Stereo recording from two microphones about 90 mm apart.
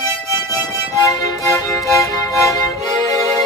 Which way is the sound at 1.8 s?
Centre (ahead or behind).